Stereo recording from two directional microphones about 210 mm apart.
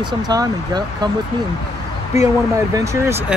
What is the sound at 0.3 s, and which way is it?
Speech, 20° right (ahead or behind).